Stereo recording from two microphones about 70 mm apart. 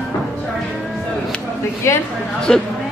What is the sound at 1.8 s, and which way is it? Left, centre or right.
Speech, left.